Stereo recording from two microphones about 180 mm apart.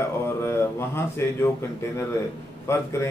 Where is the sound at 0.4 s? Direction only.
15° left (ahead or behind).